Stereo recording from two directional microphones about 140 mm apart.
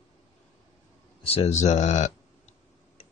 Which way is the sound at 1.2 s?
45° left (ahead or behind).